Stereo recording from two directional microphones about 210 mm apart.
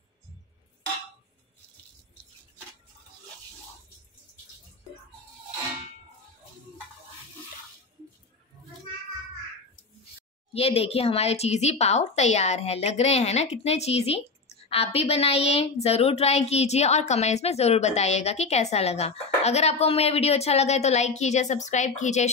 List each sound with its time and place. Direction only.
10.5 s a woman's voice: 30° left (ahead or behind)